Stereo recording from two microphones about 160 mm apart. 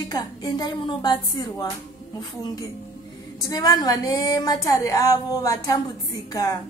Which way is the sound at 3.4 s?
25° left (ahead or behind).